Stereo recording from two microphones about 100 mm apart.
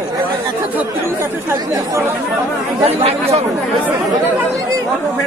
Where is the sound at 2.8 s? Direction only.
90° right.